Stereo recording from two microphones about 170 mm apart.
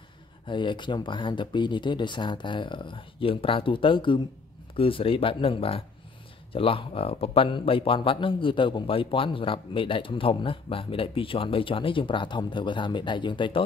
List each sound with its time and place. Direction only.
0.5 s speech: 30° left (ahead or behind)